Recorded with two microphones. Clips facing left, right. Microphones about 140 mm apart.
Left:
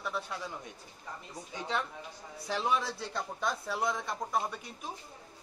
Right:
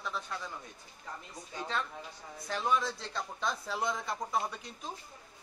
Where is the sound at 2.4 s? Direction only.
15° left (ahead or behind).